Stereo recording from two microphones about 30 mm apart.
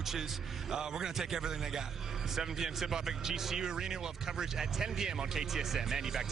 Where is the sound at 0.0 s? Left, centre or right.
Centre.